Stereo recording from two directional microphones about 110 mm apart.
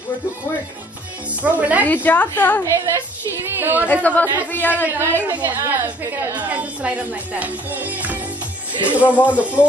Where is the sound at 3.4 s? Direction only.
20° right (ahead or behind).